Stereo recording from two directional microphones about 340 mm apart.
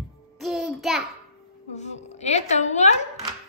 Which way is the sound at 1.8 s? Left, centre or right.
Centre.